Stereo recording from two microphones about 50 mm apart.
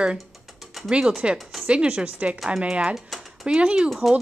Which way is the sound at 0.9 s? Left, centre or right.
Centre.